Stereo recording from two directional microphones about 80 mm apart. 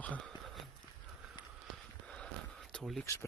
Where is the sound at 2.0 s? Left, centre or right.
Centre.